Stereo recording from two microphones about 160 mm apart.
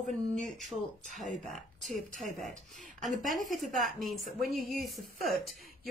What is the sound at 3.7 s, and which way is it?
Speech, 55° right (ahead or behind).